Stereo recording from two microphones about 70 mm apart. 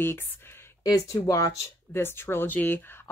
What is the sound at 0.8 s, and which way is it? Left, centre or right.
Speech, left.